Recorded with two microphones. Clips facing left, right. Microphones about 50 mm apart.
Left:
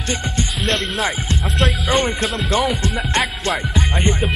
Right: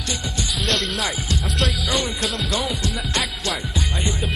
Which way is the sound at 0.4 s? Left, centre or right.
Left.